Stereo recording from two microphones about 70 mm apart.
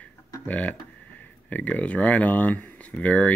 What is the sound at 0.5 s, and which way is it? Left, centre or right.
Speech, left.